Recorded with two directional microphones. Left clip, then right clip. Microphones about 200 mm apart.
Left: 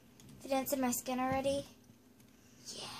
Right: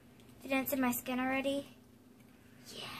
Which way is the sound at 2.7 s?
45° left (ahead or behind).